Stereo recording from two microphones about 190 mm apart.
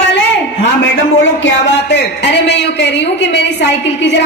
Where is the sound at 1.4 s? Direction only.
65° left (ahead or behind).